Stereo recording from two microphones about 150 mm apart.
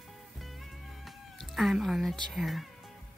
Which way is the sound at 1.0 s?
Centre (ahead or behind).